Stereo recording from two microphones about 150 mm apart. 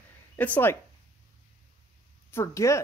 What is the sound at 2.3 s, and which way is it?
Speech, 20° left (ahead or behind).